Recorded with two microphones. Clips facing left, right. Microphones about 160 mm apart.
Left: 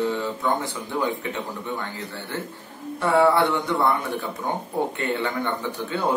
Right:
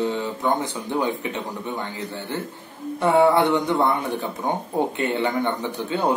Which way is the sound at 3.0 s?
20° right (ahead or behind).